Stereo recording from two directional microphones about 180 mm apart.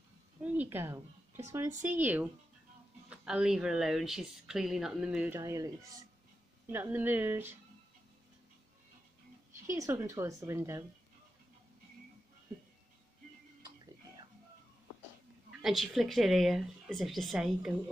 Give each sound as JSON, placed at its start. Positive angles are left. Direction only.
{"t": 0.4, "sound": "a woman's voice", "side_deg": -10}
{"t": 9.7, "sound": "speech", "side_deg": -15}
{"t": 15.6, "sound": "speech", "side_deg": 0}